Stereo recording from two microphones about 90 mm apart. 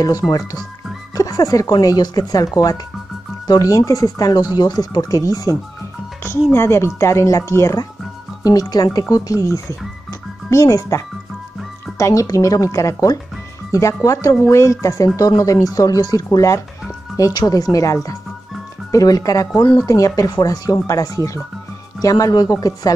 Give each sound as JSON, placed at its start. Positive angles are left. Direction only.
{"t": 0.2, "sound": "speech", "side_deg": 10}
{"t": 1.1, "sound": "speech", "side_deg": 40}
{"t": 12.0, "sound": "speech", "side_deg": 40}
{"t": 17.3, "sound": "speech", "side_deg": 50}